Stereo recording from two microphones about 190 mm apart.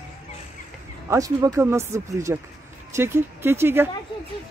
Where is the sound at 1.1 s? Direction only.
15° right (ahead or behind).